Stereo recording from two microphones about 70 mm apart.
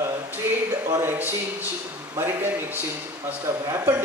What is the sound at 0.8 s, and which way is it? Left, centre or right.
Speech, right.